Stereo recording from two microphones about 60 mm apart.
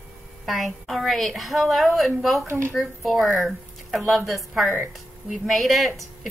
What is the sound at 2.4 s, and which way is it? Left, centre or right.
Speech, right.